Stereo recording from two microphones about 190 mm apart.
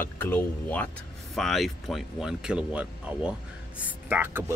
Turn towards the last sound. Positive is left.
turn(degrees=-10)  # may be behind; listen again after turning